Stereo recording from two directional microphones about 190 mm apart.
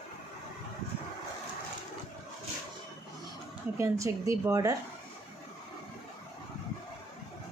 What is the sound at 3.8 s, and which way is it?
Speech, 15° right (ahead or behind).